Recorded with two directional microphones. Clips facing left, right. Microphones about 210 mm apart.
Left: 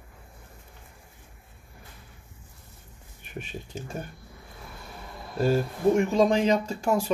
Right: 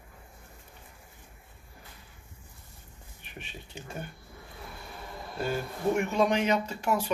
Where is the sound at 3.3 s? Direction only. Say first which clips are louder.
Left 8 dB; 45° left (ahead or behind).